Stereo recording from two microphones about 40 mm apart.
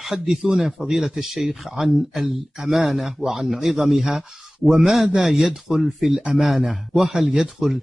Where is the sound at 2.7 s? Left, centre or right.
Centre.